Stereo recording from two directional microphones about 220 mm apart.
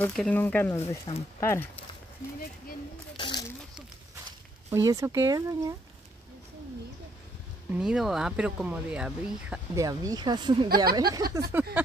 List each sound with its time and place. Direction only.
0.0 s speech: 5° left (ahead or behind)
1.1 s speech: 25° left (ahead or behind)
1.4 s speech: 10° left (ahead or behind)
3.2 s a sound: 20° left (ahead or behind)
4.6 s speech: 15° right (ahead or behind)
7.7 s speech: 5° right (ahead or behind)
9.8 s speech: 15° right (ahead or behind)